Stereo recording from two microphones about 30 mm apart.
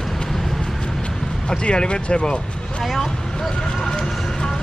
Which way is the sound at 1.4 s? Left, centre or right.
Left.